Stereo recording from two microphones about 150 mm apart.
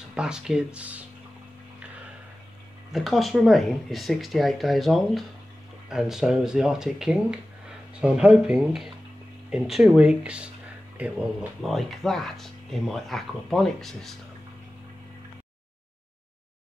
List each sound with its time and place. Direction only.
0.1 s speech: 5° right (ahead or behind)
2.9 s speech: centre (ahead or behind)